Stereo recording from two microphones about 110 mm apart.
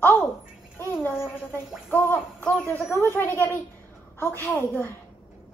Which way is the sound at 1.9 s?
20° left (ahead or behind).